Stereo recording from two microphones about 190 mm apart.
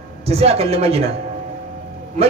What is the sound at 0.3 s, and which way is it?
Speech, 30° right (ahead or behind).